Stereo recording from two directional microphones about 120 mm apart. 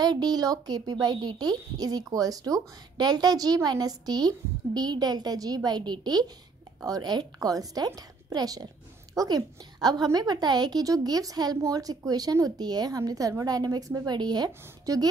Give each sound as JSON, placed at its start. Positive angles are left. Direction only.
{"t": 0.0, "sound": "a woman's voice", "side_deg": -35}